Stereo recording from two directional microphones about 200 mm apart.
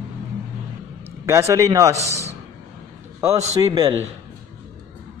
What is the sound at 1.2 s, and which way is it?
Speech, 15° right (ahead or behind).